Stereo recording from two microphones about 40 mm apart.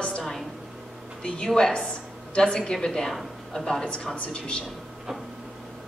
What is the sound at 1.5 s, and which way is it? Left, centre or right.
Speech, centre.